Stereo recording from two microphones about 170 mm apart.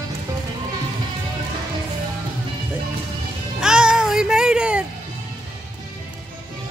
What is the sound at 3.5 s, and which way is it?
Music, 5° right (ahead or behind).